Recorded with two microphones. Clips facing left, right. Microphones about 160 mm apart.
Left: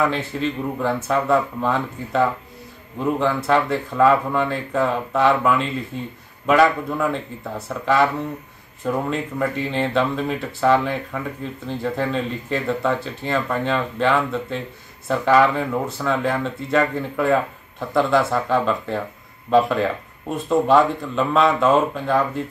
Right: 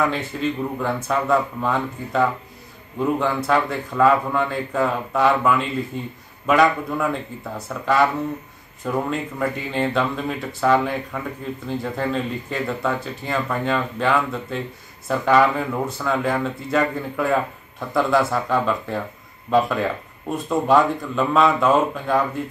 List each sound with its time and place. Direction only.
0.1 s speech: centre (ahead or behind)